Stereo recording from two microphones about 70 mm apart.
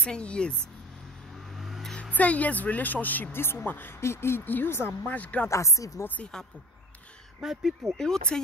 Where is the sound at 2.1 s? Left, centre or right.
Left.